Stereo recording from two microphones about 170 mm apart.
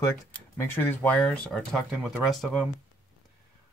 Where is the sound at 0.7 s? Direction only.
10° left (ahead or behind).